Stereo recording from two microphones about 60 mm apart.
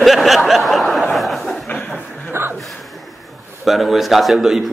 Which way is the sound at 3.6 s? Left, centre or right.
Centre.